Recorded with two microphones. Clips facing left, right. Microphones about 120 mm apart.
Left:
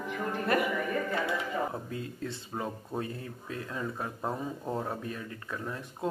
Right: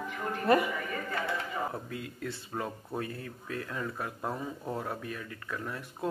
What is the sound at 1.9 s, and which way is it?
Speech, 30° left (ahead or behind).